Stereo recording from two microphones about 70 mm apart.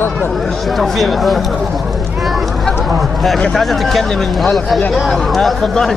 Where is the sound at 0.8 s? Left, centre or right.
Centre.